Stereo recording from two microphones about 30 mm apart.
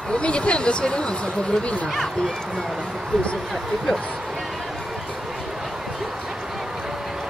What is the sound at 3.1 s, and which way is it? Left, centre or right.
Speech, left.